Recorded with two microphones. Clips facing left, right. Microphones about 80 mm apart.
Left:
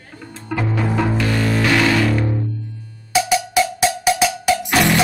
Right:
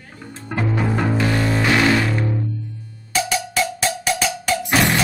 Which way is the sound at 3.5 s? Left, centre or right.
Centre.